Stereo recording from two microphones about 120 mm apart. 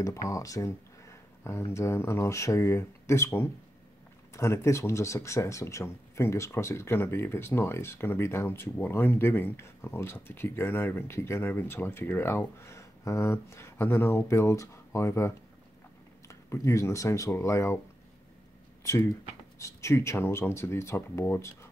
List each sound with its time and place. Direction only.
0.0 s speech: 25° left (ahead or behind)
18.9 s speech: 25° left (ahead or behind)